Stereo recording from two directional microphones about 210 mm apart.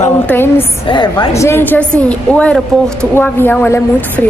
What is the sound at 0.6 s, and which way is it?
A woman's voice, 20° left (ahead or behind).